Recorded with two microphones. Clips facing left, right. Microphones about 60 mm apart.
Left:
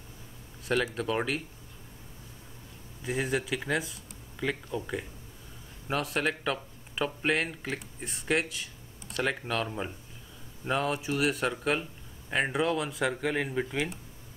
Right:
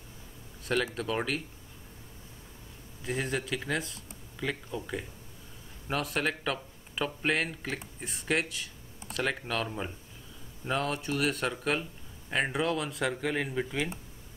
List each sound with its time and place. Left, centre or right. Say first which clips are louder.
0.9 s speech: left 2 dB; centre
3.0 s speech: left 2 dB; centre